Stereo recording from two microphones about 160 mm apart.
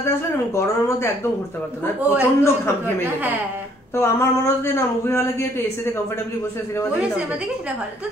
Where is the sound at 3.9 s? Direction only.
15° left (ahead or behind).